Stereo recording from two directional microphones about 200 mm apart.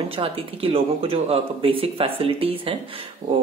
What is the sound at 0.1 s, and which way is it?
Speech, 30° right (ahead or behind).